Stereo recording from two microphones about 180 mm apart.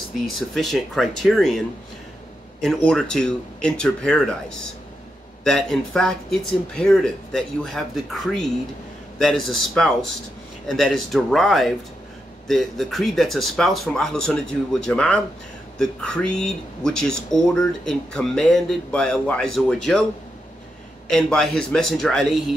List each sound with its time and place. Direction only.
0.6 s speech: centre (ahead or behind)
2.6 s speech: centre (ahead or behind)
5.4 s speech: centre (ahead or behind)
21.1 s speech: 5° left (ahead or behind)